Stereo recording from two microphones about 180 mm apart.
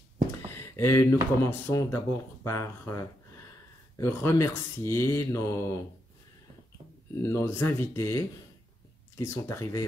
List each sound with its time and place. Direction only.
0.6 s a sound: 15° left (ahead or behind)
1.4 s speech: 15° left (ahead or behind)
7.2 s speech: 15° left (ahead or behind)